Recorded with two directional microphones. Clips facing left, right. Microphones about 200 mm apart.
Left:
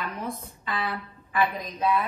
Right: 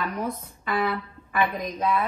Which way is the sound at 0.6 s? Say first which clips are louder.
Right 5 dB; 50° right (ahead or behind).